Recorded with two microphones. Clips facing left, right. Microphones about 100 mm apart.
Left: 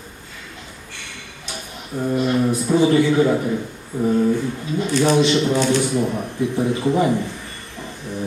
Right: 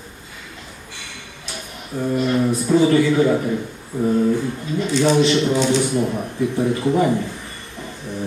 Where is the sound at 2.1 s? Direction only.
15° left (ahead or behind).